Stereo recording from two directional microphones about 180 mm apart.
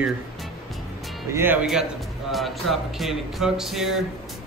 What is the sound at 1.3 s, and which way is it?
Speech, 10° right (ahead or behind).